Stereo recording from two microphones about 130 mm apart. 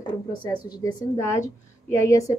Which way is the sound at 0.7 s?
30° left (ahead or behind).